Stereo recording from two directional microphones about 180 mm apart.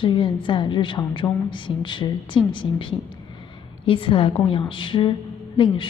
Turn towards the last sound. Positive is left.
turn(degrees=25)  # may be behind; listen again after turning